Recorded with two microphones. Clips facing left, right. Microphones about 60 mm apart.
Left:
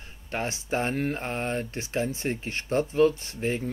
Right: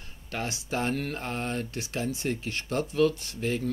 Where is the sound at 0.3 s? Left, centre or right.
Left.